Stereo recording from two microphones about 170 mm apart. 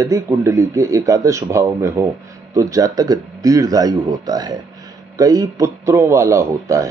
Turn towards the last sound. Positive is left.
turn(degrees=-15)  # may be behind; listen again after turning